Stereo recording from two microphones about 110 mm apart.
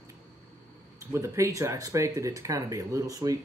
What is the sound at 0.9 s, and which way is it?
Speech, 25° right (ahead or behind).